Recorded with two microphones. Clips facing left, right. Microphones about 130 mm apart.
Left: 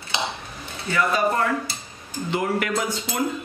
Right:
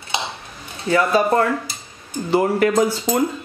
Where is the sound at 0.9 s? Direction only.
35° right (ahead or behind).